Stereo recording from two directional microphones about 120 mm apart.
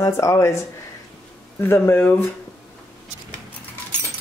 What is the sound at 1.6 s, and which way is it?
Speech, 20° left (ahead or behind).